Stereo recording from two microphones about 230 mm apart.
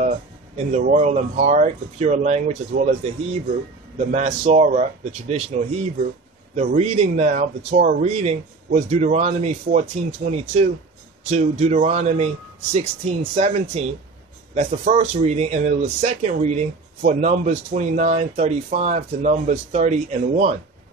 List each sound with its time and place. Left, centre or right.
0.6 s speech: right